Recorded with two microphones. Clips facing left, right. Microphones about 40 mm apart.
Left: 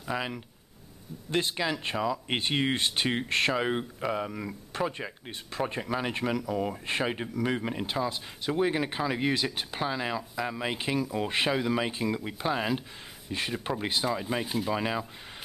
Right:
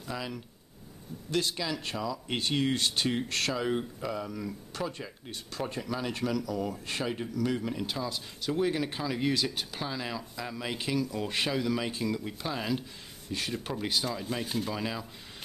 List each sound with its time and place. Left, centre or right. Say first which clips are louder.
0.0 s speech: left 4 dB; left